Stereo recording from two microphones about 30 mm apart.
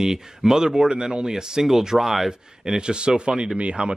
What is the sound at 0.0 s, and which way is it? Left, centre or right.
Speech, centre.